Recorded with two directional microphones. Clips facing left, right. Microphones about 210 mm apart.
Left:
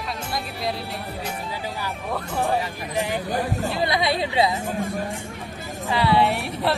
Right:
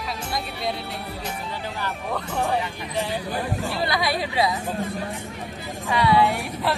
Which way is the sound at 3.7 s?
20° left (ahead or behind).